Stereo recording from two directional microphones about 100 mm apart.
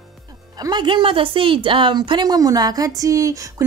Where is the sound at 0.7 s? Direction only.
50° right (ahead or behind).